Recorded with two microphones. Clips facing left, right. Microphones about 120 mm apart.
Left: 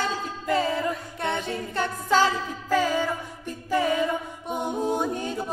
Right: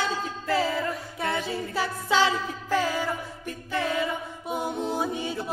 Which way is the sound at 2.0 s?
45° left (ahead or behind).